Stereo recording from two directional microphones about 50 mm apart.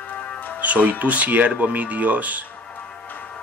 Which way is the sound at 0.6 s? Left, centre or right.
Right.